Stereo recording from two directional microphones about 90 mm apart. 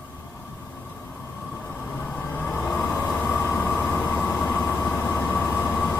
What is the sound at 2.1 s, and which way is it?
Train, 15° left (ahead or behind).